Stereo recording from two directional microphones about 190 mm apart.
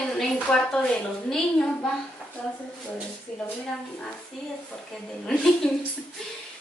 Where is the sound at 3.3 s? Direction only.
5° left (ahead or behind).